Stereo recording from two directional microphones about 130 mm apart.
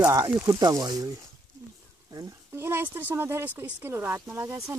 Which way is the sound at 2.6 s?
20° right (ahead or behind).